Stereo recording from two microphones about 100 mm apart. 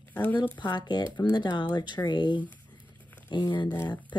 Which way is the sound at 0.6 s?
50° left (ahead or behind).